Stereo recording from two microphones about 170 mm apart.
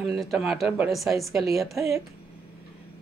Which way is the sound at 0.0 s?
Centre (ahead or behind).